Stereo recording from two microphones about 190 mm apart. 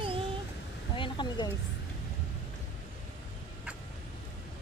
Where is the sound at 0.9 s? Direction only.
25° left (ahead or behind).